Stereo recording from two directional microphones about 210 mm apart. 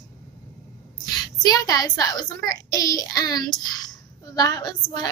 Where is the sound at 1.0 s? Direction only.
20° left (ahead or behind).